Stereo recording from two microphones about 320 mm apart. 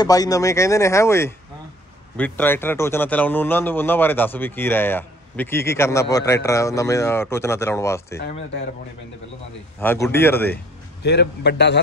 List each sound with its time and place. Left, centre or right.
0.0 s a man's voice: centre
8.3 s a man's voice: left
9.8 s a man's voice: centre
11.0 s a man's voice: left